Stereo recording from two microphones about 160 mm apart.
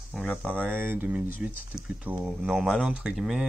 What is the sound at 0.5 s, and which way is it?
Speech, 10° right (ahead or behind).